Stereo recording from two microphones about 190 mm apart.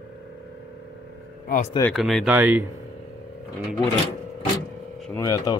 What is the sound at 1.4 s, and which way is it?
Speech, 45° left (ahead or behind).